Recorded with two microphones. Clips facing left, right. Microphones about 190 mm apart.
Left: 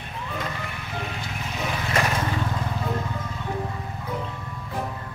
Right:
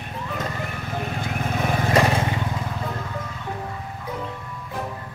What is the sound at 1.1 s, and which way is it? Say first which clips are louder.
Vehicle: right 6 dB; 50° right (ahead or behind).